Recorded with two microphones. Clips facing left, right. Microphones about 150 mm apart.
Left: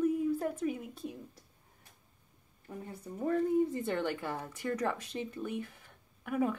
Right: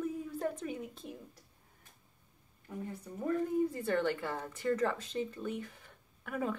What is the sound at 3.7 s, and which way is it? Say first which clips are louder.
Speech: right 1 dB; 15° left (ahead or behind).